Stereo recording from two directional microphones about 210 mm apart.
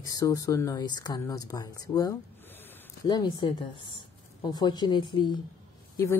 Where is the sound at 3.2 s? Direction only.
20° left (ahead or behind).